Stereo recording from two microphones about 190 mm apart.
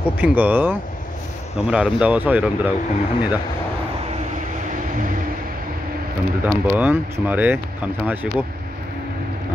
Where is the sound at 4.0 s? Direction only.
35° right (ahead or behind).